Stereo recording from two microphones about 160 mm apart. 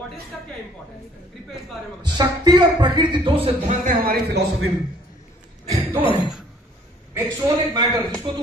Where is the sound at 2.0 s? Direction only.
25° right (ahead or behind).